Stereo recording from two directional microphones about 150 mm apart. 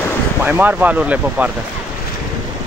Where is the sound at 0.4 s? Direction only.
10° right (ahead or behind).